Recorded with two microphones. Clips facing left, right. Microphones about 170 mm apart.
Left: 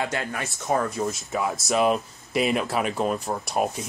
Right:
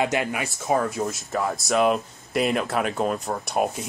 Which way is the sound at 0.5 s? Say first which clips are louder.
Left 2 dB; centre (ahead or behind).